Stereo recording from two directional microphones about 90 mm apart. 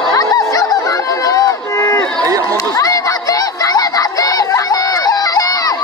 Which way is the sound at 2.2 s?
40° right (ahead or behind).